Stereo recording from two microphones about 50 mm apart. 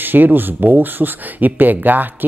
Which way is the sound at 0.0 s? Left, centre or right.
Right.